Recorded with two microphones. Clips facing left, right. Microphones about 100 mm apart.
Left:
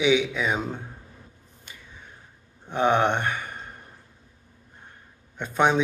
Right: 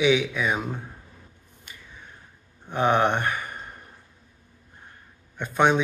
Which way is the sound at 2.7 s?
20° left (ahead or behind).